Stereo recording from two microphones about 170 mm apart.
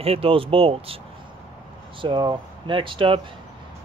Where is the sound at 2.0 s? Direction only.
25° right (ahead or behind).